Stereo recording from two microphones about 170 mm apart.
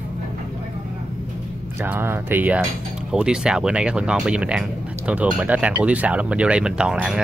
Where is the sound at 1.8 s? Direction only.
10° right (ahead or behind).